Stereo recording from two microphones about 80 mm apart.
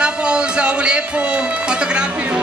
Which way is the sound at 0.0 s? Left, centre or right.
Centre.